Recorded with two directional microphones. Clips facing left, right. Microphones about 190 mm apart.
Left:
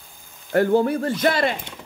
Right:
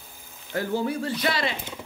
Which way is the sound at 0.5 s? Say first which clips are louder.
Left 8 dB; 55° left (ahead or behind).